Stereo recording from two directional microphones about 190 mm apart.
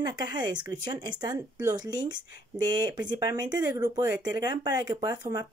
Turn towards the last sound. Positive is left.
turn(degrees=-20)  # may be behind; listen again after turning